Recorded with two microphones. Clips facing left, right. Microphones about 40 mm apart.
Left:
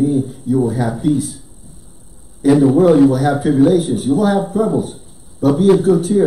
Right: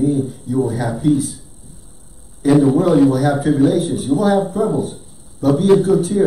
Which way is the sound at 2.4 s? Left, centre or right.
Centre.